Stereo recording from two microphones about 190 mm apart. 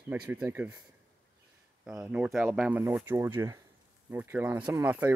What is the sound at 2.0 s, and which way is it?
Speech, 5° right (ahead or behind).